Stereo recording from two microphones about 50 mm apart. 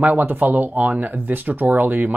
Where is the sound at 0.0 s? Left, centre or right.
Right.